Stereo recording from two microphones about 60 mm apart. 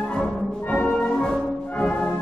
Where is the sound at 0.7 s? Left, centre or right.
Centre.